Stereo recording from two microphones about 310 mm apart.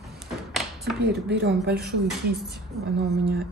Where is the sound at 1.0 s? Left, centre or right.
Right.